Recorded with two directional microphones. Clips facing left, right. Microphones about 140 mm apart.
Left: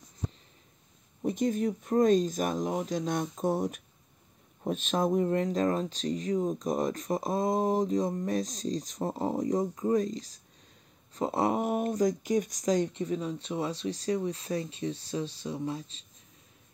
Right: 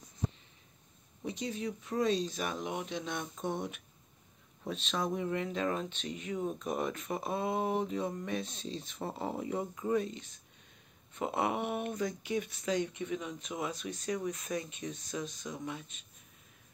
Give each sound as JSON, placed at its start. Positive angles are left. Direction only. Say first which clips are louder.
{"t": 1.2, "sound": "speech", "louder": "left 9 dB", "side_deg": 50}